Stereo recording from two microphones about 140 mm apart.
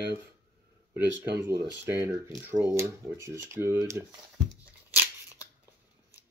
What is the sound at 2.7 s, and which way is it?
Speech, 20° right (ahead or behind).